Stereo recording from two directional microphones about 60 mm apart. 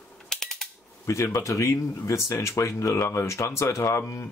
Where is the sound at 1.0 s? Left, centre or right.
Left.